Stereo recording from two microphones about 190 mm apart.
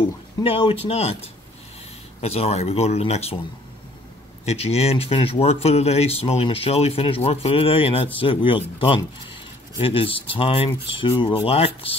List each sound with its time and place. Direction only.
0.4 s speech: 30° left (ahead or behind)
4.5 s speech: 35° left (ahead or behind)